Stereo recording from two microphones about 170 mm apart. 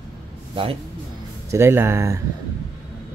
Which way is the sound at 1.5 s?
15° right (ahead or behind).